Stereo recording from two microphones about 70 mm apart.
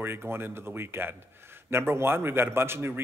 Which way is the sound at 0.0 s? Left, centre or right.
Right.